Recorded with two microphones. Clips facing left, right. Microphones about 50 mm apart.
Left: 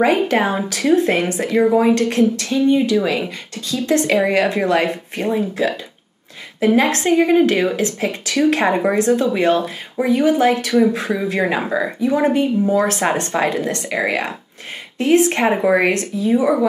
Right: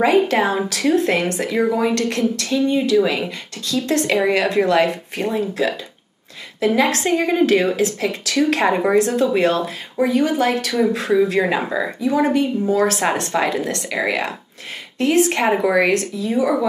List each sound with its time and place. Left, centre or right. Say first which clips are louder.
0.0 s speech: even; centre
2.6 s speech: left 1 dB; centre
3.6 s speech: left 2 dB; centre
10.0 s speech: left 3 dB; centre
13.0 s speech: left 1 dB; centre